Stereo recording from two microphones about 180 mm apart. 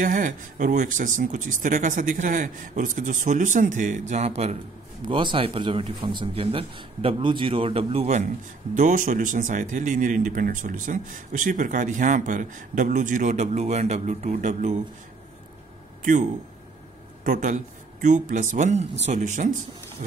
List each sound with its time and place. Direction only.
0.0 s speech: 45° right (ahead or behind)
5.0 s speech: 25° right (ahead or behind)
8.7 s speech: 45° right (ahead or behind)
16.0 s speech: 50° right (ahead or behind)